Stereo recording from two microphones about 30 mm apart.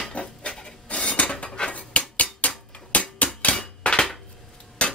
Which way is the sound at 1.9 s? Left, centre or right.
Left.